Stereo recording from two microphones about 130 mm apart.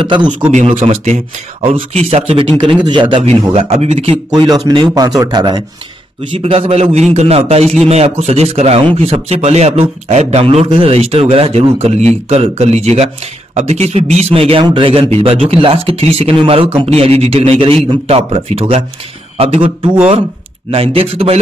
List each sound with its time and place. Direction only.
0.0 s speech: 40° right (ahead or behind)
1.6 s speech: 50° right (ahead or behind)
3.5 s speech: 50° right (ahead or behind)
4.3 s speech: 30° right (ahead or behind)
6.3 s speech: 45° right (ahead or behind)
7.6 s a man's voice: centre (ahead or behind)
7.9 s speech: 55° right (ahead or behind)